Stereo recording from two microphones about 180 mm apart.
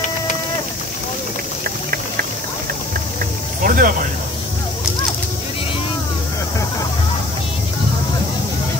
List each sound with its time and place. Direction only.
3.6 s cricket: 50° right (ahead or behind)